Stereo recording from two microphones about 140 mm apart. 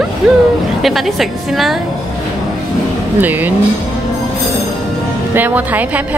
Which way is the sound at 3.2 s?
10° right (ahead or behind).